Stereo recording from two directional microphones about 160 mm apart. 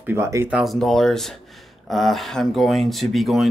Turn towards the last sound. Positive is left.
turn(degrees=0)  # may be behind; listen again after turning